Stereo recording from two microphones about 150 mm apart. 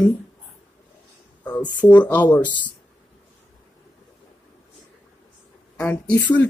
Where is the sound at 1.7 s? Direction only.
10° left (ahead or behind).